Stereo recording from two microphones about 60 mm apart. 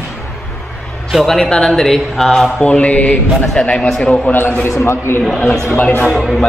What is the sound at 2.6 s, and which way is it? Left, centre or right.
Mantra, left.